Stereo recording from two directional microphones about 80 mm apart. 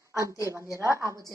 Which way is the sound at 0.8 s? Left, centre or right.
Right.